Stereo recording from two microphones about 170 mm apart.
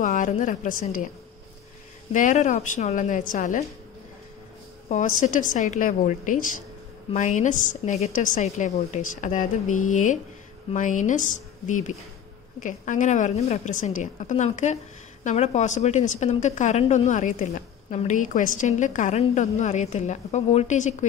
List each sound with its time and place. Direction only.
0.0 s speech: 50° left (ahead or behind)
2.1 s speech: 50° left (ahead or behind)
4.8 s speech: 45° left (ahead or behind)